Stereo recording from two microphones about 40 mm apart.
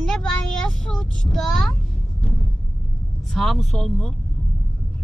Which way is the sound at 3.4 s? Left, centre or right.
Centre.